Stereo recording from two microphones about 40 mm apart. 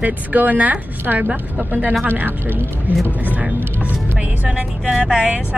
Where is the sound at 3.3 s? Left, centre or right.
Right.